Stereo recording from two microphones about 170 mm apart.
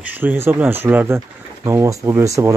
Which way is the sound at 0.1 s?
10° right (ahead or behind).